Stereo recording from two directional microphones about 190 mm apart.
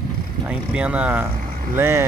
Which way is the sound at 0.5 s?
5° right (ahead or behind).